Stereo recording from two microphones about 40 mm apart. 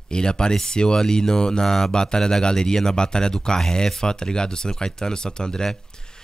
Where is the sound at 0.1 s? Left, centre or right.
Centre.